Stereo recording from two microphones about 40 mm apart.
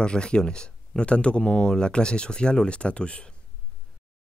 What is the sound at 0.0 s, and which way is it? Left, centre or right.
Speech, left.